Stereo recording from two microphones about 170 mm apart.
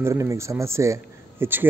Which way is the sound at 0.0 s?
15° right (ahead or behind).